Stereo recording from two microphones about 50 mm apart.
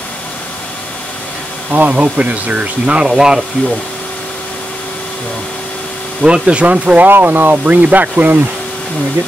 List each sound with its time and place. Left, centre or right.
1.7 s speech: right; by 3.4 s centre
6.2 s speech: centre
7.1 s speech: right